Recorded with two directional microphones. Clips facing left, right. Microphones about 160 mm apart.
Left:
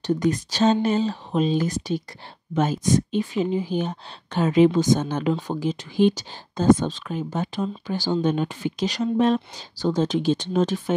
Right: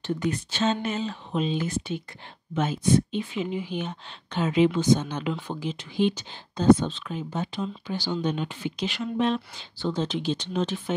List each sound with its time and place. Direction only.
0.0 s speech: 40° left (ahead or behind)